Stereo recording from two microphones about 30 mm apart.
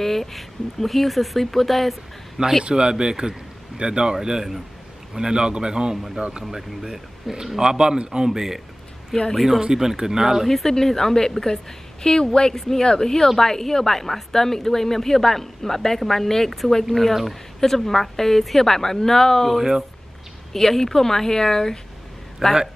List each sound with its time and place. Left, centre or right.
0.0 s speech: centre
2.4 s a man's voice: right
7.3 s speech: centre
7.6 s a man's voice: right
8.3 s speech: centre
9.6 s speech: centre
10.4 s a woman's voice: centre; by 12.5 s left
12.5 s speech: centre
17.1 s speech: centre
17.6 s speech: centre
20.5 s speech: centre
22.4 s speech: centre